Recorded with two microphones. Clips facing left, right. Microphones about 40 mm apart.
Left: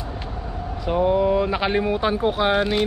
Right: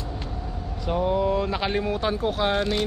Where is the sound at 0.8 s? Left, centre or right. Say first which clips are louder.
Left 4 dB; centre.